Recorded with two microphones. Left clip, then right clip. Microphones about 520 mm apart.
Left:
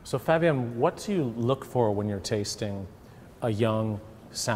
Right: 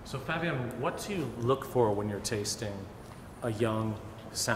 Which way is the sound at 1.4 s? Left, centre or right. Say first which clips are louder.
Even; left.